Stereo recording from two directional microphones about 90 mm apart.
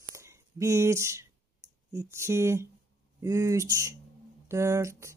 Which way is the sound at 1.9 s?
30° right (ahead or behind).